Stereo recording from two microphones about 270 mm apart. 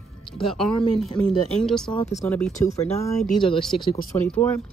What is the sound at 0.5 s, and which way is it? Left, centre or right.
Speech, centre.